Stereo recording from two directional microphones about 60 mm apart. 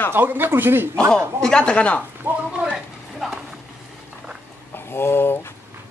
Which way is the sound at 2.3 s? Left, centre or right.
Right.